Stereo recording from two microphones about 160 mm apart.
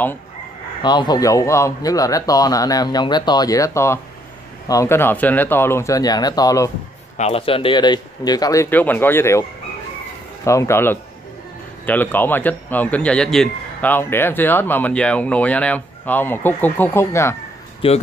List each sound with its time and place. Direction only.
0.8 s speech: 25° left (ahead or behind)
7.2 s speech: 40° left (ahead or behind); by 17.4 s 15° left (ahead or behind)
17.8 s speech: 35° left (ahead or behind)